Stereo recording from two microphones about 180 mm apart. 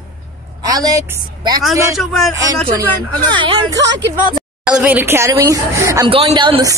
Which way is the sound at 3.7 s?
80° right.